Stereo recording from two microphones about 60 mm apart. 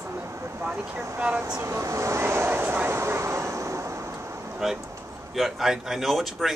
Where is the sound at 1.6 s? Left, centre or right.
Right.